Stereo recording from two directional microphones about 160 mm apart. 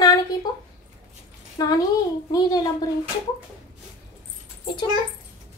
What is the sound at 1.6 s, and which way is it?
Speech, 25° left (ahead or behind).